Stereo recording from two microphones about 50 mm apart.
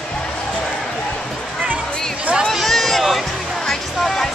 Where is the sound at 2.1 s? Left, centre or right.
Right.